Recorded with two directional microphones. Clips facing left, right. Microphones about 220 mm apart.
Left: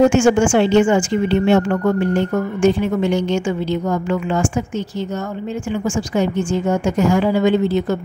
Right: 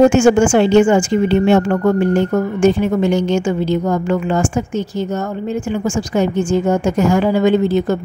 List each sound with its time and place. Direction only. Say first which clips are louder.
0.1 s a woman's voice: right 3 dB; 40° right (ahead or behind)